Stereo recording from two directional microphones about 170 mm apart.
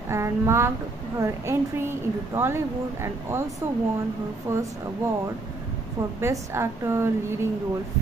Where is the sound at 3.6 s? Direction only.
15° right (ahead or behind).